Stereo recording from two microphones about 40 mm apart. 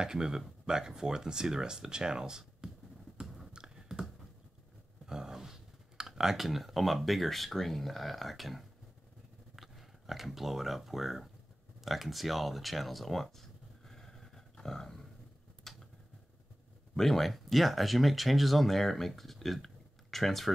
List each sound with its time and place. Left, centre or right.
0.0 s speech: centre
3.2 s a sound: centre
5.0 s speech: centre
11.8 s a sound: centre
15.7 s mechanisms: centre
16.9 s speech: centre